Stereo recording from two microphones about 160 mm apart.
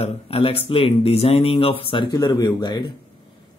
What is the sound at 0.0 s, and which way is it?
Speech, 40° left (ahead or behind).